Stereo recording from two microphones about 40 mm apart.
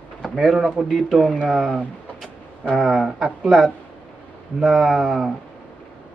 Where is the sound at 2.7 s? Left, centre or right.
Centre.